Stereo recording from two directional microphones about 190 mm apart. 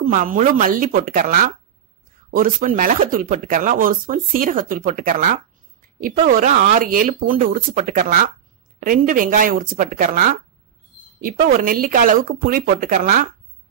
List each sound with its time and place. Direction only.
0.0 s speech: 45° right (ahead or behind)
11.5 s speech: 45° right (ahead or behind)